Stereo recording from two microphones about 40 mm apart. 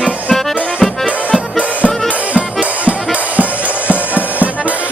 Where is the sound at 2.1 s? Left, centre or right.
Right.